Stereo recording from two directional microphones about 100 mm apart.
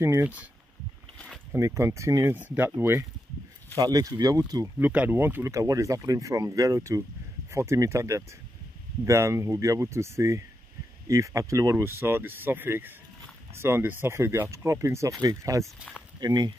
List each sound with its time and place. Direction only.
0.0 s speech: 25° right (ahead or behind)
1.1 s rowboat: 10° left (ahead or behind)
1.5 s speech: 30° right (ahead or behind)
3.7 s speech: 35° right (ahead or behind)
4.7 s speech: 15° right (ahead or behind); by 15.7 s 35° right (ahead or behind)
16.2 s speech: 45° right (ahead or behind)